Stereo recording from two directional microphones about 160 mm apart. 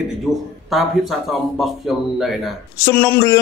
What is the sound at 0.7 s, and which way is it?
Speech, centre (ahead or behind).